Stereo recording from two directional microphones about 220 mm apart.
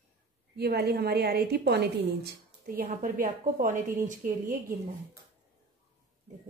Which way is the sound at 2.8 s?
35° right (ahead or behind).